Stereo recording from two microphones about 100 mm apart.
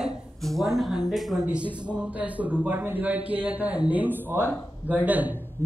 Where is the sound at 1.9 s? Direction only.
15° right (ahead or behind).